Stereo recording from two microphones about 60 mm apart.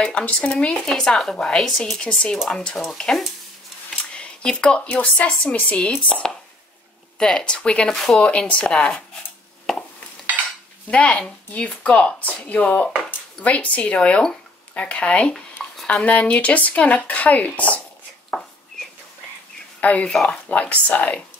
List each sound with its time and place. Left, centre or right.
0.0 s speech: left
0.8 s speech: centre
7.9 s speech: centre
8.2 s speech: left
9.7 s a sound: centre
10.9 s speech: centre
19.8 s speech: left
20.1 s speech: centre
20.4 s speech: left